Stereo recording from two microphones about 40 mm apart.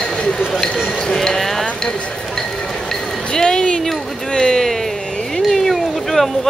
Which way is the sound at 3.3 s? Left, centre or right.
Centre.